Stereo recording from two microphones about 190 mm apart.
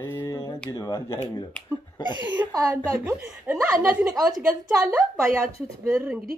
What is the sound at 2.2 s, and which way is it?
A woman's voice, 15° right (ahead or behind).